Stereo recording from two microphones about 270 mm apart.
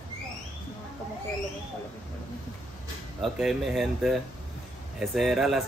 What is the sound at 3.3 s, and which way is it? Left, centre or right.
Speech, centre.